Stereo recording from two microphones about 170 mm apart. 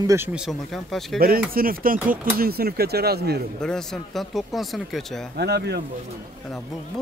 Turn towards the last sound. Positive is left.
turn(degrees=-75)  # may be behind; listen again after turning